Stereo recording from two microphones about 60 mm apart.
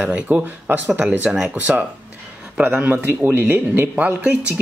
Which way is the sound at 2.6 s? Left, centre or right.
Right.